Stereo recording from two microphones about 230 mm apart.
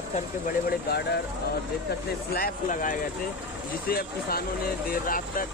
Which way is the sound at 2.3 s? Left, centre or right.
Left.